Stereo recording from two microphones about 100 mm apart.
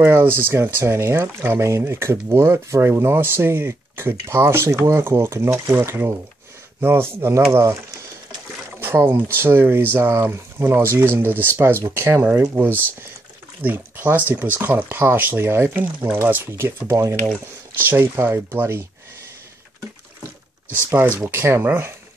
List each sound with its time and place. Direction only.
0.0 s speech: 20° right (ahead or behind)
8.7 s a sound: 25° right (ahead or behind)
9.4 s speech: 25° right (ahead or behind)
21.3 s speech: 25° right (ahead or behind)